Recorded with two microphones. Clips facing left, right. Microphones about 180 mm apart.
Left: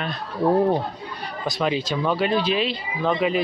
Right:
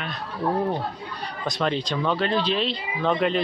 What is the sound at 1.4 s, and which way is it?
Speech, 5° left (ahead or behind).